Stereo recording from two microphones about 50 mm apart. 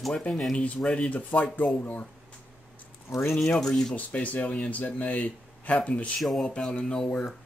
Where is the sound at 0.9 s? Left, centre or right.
Left.